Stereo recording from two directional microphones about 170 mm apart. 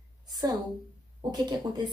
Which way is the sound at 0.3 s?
25° right (ahead or behind).